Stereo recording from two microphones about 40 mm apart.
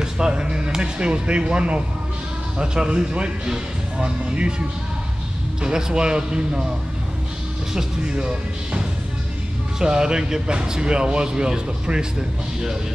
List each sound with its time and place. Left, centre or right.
0.0 s speech: right
7.7 s speech: right